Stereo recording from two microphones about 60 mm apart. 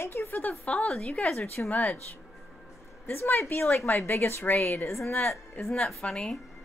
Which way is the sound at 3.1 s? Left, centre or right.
Left.